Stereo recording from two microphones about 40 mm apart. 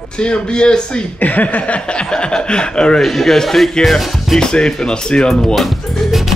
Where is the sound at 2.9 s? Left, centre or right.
Centre.